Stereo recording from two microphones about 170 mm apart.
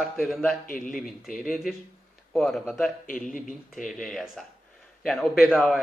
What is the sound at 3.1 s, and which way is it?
Speech, 55° left (ahead or behind).